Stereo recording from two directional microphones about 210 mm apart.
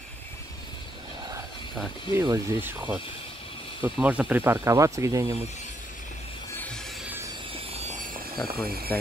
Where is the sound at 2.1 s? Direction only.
15° right (ahead or behind).